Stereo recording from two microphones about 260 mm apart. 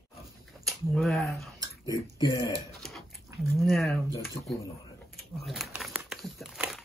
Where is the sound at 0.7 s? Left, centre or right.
Centre.